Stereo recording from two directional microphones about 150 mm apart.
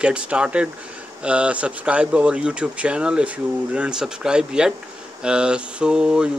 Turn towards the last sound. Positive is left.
turn(degrees=-5)  # may be behind; listen again after turning